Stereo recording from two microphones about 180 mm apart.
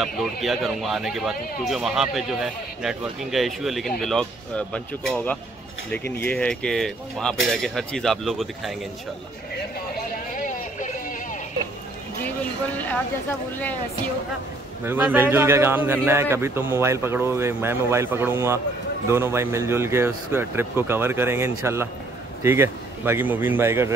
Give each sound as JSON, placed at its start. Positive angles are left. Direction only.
{"t": 0.0, "sound": "a man's voice", "side_deg": 0}
{"t": 9.9, "sound": "a sound", "side_deg": 45}
{"t": 12.7, "sound": "speech", "side_deg": 10}
{"t": 14.9, "sound": "speech", "side_deg": -10}